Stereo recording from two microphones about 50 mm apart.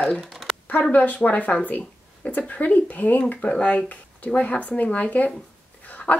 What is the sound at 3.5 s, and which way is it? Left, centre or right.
Speech, centre.